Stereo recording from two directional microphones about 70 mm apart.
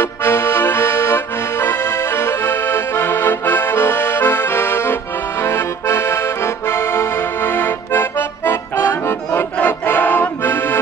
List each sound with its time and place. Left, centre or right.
0.0 s accordion: left